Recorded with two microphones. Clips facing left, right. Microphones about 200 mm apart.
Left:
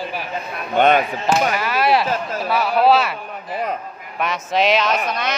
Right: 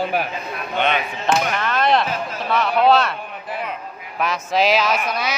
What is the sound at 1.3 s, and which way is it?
Speech, 5° left (ahead or behind).